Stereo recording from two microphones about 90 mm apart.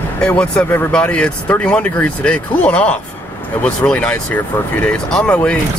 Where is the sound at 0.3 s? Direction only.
15° left (ahead or behind).